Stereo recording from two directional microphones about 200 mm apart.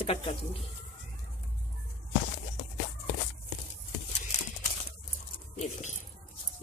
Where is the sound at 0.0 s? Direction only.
30° left (ahead or behind).